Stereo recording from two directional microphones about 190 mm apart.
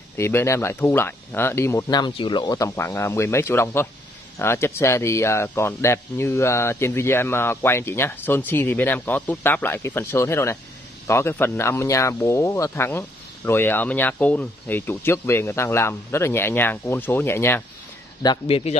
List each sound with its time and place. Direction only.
0.2 s speech: 15° left (ahead or behind)
18.2 s speech: 25° left (ahead or behind)